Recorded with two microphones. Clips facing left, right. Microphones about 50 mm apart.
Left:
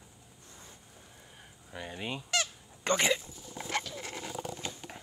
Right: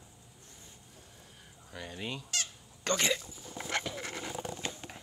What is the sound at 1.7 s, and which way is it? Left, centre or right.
Fowl, centre.